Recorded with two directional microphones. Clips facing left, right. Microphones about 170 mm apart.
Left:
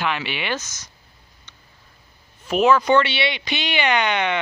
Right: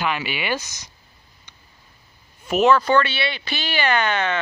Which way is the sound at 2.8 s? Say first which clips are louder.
Left 1 dB; 20° left (ahead or behind).